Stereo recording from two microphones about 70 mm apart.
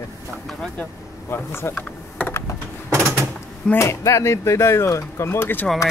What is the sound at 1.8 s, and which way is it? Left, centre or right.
Computer keyboard, centre.